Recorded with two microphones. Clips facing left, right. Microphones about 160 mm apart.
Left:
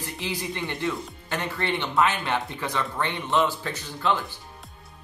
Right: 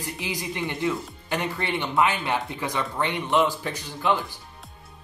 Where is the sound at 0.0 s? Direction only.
15° right (ahead or behind).